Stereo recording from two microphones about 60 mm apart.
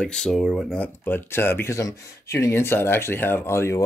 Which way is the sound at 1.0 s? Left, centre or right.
Left.